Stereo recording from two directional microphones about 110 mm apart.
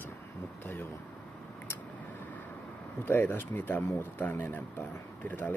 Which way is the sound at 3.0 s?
20° left (ahead or behind).